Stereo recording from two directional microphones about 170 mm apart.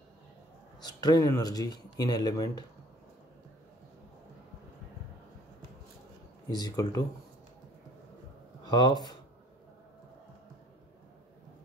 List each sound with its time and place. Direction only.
0.8 s speech: 25° left (ahead or behind)
6.5 s speech: 20° left (ahead or behind)
8.6 s speech: 25° left (ahead or behind)